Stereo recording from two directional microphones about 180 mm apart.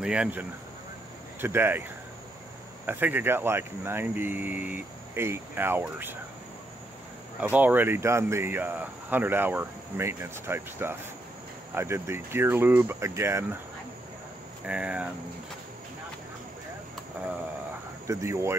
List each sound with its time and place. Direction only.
0.0 s speech: 5° right (ahead or behind)
2.9 s speech: 10° right (ahead or behind)
7.3 s speech: 10° right (ahead or behind)
14.7 s speech: 5° right (ahead or behind)
18.0 s speech: 15° right (ahead or behind)